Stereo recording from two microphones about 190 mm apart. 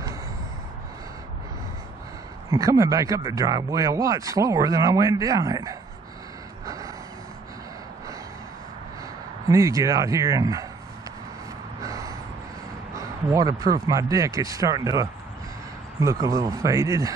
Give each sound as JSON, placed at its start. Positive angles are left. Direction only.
{"t": 2.5, "sound": "speech", "side_deg": -15}
{"t": 6.6, "sound": "gasp", "side_deg": -20}
{"t": 9.5, "sound": "speech", "side_deg": -15}
{"t": 11.8, "sound": "gasp", "side_deg": -20}
{"t": 12.9, "sound": "a sound", "side_deg": -15}
{"t": 13.8, "sound": "speech", "side_deg": -15}